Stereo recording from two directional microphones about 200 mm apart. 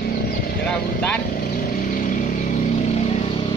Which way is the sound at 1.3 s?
45° left (ahead or behind).